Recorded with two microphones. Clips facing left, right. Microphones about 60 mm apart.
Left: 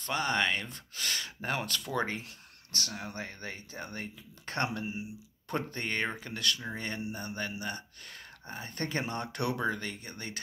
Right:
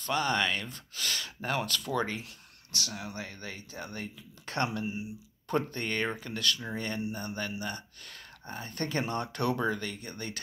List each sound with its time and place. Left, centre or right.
0.0 s speech: left